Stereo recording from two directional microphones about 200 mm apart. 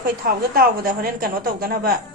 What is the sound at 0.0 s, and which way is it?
A woman's voice, 45° right (ahead or behind).